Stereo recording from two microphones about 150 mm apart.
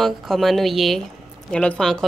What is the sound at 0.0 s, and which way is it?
A woman's voice, centre (ahead or behind).